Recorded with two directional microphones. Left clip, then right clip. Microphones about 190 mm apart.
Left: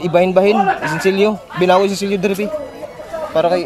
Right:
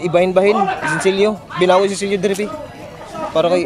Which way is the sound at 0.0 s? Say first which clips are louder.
Left 1 dB; 10° left (ahead or behind).